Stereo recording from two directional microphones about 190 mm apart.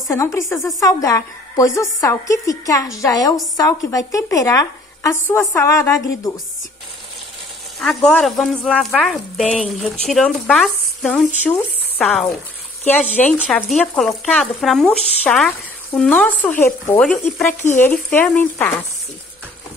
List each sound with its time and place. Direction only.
0.1 s speech: 15° left (ahead or behind)
7.8 s speech: 5° left (ahead or behind)